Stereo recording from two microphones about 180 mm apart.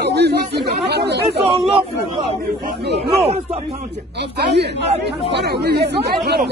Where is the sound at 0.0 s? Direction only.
65° right (ahead or behind).